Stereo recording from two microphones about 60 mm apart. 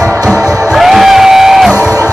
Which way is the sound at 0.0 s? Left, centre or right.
Right.